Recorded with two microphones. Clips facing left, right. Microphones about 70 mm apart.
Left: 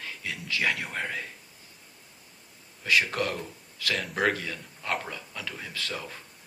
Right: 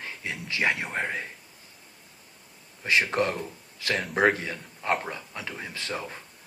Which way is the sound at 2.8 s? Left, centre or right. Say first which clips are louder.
Right 2 dB; right.